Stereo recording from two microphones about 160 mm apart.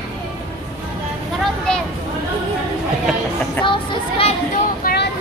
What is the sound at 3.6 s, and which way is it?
Speech, 35° left (ahead or behind).